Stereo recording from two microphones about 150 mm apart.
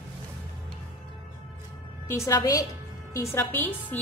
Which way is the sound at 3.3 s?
10° left (ahead or behind).